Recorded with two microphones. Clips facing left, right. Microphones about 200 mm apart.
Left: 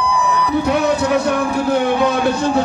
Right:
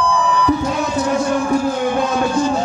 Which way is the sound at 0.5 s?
65° left (ahead or behind).